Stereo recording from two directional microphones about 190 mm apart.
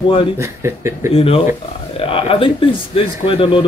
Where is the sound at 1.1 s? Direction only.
30° left (ahead or behind).